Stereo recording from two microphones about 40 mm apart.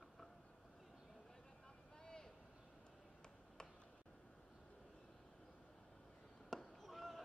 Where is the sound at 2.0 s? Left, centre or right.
Centre.